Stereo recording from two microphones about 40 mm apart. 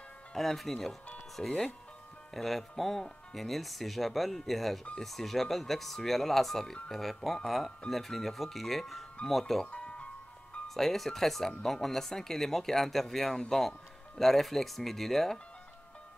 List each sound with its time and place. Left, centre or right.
0.3 s speech: centre
9.7 s music: left
10.7 s speech: centre